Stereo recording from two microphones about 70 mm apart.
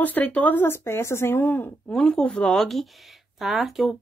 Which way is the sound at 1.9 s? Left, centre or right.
Centre.